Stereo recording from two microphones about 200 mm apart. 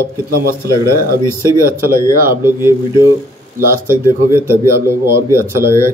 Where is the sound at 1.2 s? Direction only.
15° left (ahead or behind).